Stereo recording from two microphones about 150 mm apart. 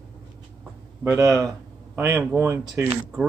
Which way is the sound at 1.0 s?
20° right (ahead or behind).